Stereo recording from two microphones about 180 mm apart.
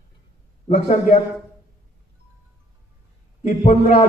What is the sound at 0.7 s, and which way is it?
Speech, 40° left (ahead or behind).